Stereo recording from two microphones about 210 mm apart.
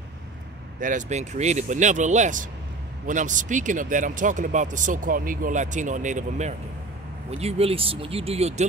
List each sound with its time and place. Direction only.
0.7 s speech: 35° right (ahead or behind)